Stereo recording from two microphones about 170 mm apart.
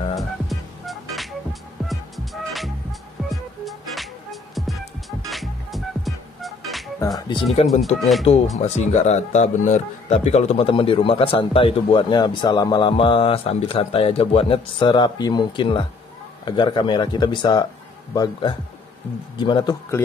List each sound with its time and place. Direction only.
0.1 s music: centre (ahead or behind)
7.2 s speech: 25° left (ahead or behind)
8.0 s speech: centre (ahead or behind)
8.5 s speech: 40° left (ahead or behind); by 20.0 s 25° left (ahead or behind)